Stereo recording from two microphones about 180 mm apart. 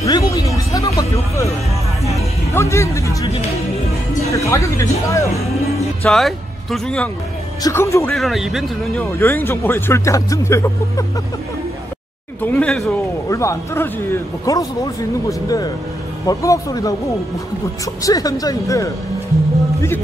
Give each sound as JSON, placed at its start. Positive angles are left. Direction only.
{"t": 0.0, "sound": "music", "side_deg": 20}
{"t": 2.5, "sound": "speech", "side_deg": 15}
{"t": 4.5, "sound": "speech", "side_deg": 15}
{"t": 6.0, "sound": "speech", "side_deg": 0}
{"t": 7.6, "sound": "speech", "side_deg": 15}
{"t": 8.1, "sound": "speech", "side_deg": 0}
{"t": 9.0, "sound": "speech", "side_deg": 10}
{"t": 12.4, "sound": "a man's voice", "side_deg": 10}
{"t": 18.0, "sound": "a man's voice", "side_deg": 20}